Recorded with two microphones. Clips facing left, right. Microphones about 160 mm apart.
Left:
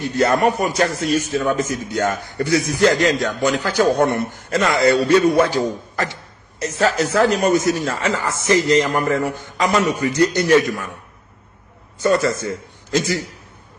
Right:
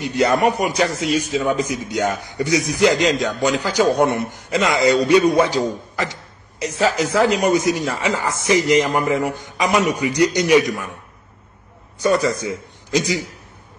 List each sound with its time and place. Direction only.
0.0 s a man's voice: 15° right (ahead or behind)
6.6 s a man's voice: 15° right (ahead or behind)
12.0 s a man's voice: 15° right (ahead or behind)